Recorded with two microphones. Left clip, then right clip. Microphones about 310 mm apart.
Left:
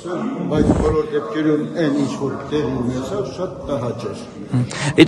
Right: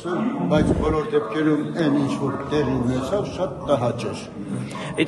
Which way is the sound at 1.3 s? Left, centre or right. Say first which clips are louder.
Left 3 dB; centre.